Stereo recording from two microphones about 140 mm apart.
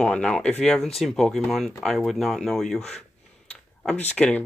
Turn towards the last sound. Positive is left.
turn(degrees=10)  # may be behind; listen again after turning